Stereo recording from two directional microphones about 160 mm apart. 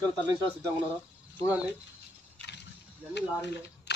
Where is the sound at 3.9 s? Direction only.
90° left.